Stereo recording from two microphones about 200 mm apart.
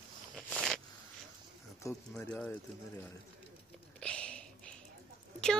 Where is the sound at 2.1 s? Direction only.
5° left (ahead or behind).